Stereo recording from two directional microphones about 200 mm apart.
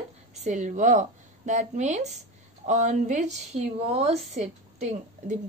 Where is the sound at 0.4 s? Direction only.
35° right (ahead or behind).